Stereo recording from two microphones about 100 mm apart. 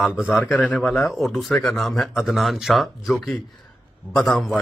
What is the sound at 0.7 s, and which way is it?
Speech, centre (ahead or behind).